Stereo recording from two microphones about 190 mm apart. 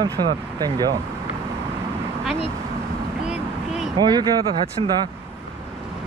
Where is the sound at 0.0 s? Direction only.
20° right (ahead or behind).